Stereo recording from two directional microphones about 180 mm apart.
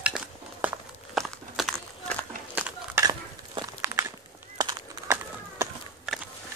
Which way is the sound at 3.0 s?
20° right (ahead or behind).